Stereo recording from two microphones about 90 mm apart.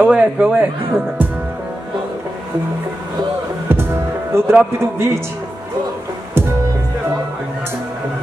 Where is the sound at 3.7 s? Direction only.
30° right (ahead or behind).